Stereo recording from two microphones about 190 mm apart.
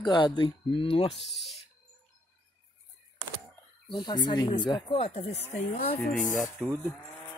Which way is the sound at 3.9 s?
25° left (ahead or behind).